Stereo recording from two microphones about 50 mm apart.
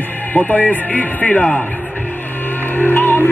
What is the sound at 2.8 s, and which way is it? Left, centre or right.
Music, left.